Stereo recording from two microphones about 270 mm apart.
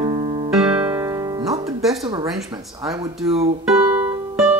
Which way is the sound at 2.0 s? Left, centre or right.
Centre.